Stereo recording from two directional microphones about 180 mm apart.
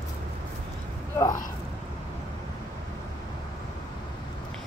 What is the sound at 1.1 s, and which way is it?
Speech, 20° left (ahead or behind).